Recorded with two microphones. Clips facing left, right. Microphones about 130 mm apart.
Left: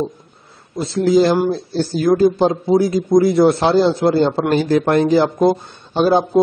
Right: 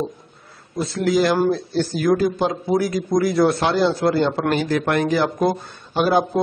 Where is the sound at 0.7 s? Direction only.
25° left (ahead or behind).